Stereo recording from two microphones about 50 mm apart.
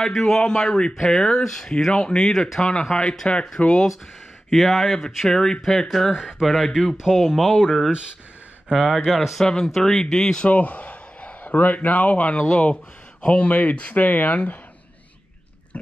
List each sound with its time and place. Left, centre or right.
0.2 s speech: centre
4.5 s speech: centre
7.0 s speech: centre
8.7 s speech: centre
10.5 s a sound: left
11.5 s speech: left